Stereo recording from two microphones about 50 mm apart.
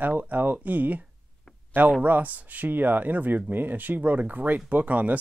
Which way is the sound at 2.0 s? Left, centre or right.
Right.